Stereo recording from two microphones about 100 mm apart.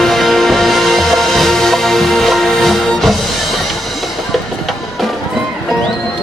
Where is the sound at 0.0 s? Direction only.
Centre (ahead or behind).